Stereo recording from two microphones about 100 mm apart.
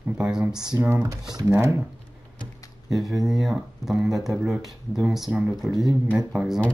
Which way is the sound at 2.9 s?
Centre (ahead or behind).